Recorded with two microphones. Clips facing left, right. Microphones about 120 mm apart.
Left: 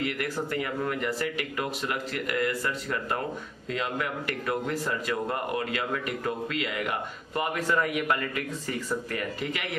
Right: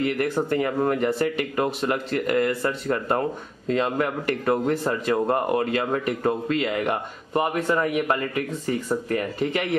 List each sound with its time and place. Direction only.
0.5 s speech: 35° right (ahead or behind)